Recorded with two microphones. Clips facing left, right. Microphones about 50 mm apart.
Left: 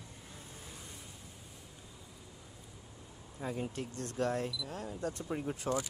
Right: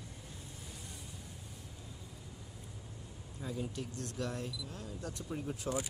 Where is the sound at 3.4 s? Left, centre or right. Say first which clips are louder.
Left 2 dB; left.